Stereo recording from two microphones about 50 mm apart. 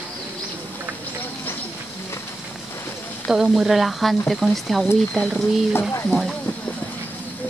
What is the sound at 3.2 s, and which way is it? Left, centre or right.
Speech, centre.